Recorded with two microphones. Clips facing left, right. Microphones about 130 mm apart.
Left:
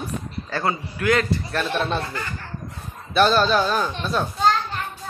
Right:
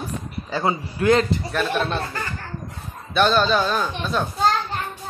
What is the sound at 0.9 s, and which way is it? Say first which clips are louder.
Speech: right 4 dB; 30° right (ahead or behind).